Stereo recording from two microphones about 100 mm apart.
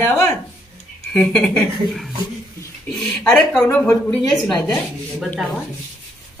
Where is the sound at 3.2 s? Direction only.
15° left (ahead or behind).